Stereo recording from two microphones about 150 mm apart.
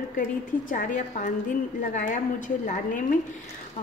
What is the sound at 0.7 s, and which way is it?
A woman's voice, 60° left (ahead or behind).